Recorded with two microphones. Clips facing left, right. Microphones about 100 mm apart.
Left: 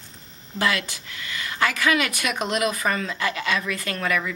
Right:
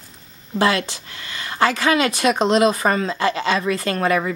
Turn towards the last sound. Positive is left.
turn(degrees=-35)  # may be behind; listen again after turning